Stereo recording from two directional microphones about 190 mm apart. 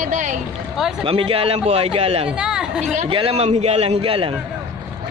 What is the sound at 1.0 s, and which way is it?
A man's voice, 30° right (ahead or behind).